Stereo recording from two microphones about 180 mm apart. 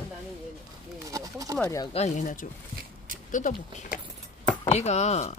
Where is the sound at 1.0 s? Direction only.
20° right (ahead or behind).